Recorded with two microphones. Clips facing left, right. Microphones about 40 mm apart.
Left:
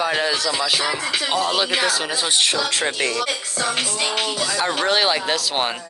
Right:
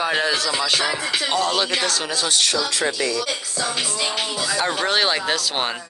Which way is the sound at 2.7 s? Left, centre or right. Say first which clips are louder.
Even; left.